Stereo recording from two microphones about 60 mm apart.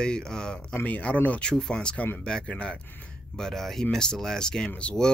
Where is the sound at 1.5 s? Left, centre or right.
Centre.